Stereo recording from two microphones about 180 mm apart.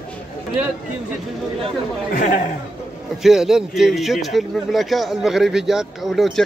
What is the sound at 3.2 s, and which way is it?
Speech, centre (ahead or behind).